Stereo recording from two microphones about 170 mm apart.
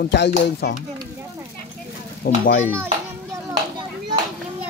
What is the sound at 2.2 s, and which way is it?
Speech, 60° left (ahead or behind).